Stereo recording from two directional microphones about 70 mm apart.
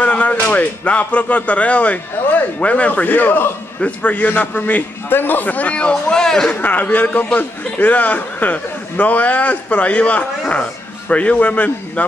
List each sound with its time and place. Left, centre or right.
0.0 s speech: centre
3.8 s speech: left
6.5 s speech: left